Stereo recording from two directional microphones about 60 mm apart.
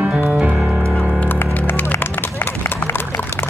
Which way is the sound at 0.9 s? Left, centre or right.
Centre.